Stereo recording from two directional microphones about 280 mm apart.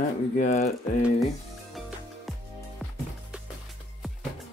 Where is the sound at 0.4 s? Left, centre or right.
Left.